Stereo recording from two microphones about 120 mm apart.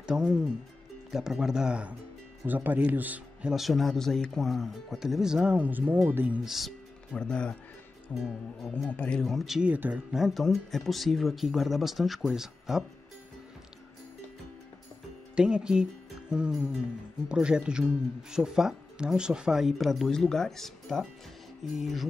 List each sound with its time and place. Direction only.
0.0 s speech: 5° right (ahead or behind)
3.5 s speech: centre (ahead or behind)
9.2 s speech: centre (ahead or behind)
15.3 s speech: 5° right (ahead or behind)